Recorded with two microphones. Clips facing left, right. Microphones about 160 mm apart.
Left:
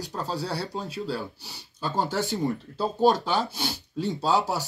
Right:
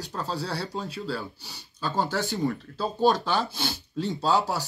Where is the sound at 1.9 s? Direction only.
20° left (ahead or behind).